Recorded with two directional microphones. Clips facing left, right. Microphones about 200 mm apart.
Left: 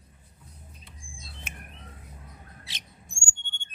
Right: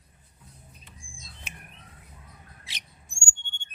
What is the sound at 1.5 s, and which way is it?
Squawk, 50° left (ahead or behind).